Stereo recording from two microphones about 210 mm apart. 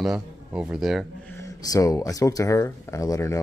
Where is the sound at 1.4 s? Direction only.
15° left (ahead or behind).